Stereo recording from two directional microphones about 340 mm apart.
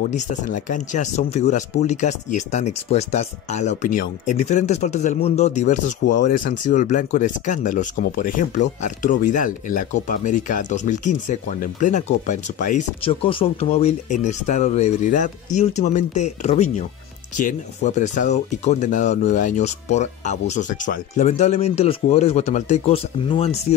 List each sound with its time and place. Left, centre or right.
0.1 s speech: left